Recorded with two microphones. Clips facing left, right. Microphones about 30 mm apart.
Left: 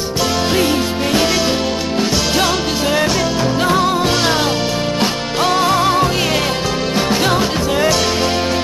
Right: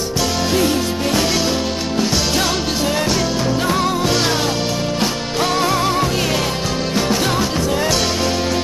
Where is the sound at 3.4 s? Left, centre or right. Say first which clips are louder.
Left 5 dB; centre.